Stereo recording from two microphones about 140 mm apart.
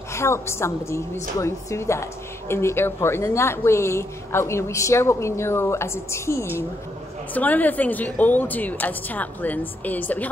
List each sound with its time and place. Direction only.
0.1 s a woman's voice: 20° left (ahead or behind)